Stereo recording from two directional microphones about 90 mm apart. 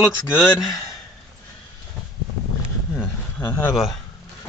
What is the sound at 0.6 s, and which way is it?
Speech, centre (ahead or behind).